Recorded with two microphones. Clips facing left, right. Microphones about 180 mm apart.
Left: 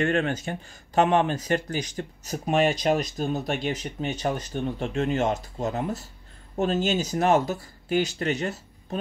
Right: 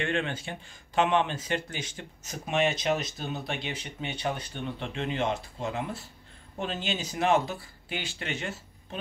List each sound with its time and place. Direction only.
0.0 s speech: 45° left (ahead or behind)